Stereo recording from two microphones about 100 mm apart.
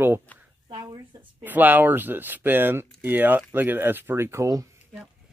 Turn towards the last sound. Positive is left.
turn(degrees=-30)  # may be behind; listen again after turning